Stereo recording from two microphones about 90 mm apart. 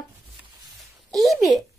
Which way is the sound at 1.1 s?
Centre (ahead or behind).